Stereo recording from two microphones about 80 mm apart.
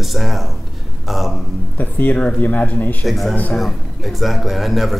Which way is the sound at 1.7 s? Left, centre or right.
Left.